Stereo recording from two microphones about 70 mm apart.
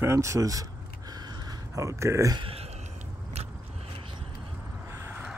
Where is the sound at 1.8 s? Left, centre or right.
Right.